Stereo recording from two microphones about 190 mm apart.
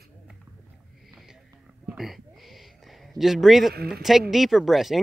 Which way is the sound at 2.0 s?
Centre (ahead or behind).